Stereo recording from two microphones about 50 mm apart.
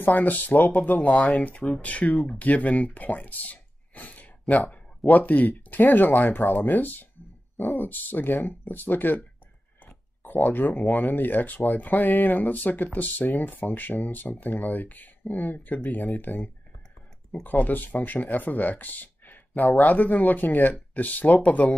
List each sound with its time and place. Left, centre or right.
0.0 s speech: left
10.2 s speech: left